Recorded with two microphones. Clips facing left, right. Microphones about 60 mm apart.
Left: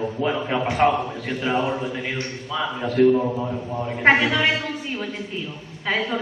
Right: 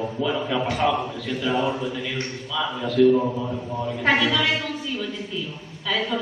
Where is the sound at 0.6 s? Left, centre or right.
Left.